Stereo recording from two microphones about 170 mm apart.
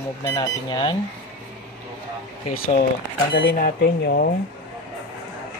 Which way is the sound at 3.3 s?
70° left (ahead or behind).